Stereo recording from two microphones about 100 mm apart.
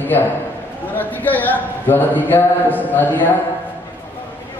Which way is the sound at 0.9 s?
15° left (ahead or behind).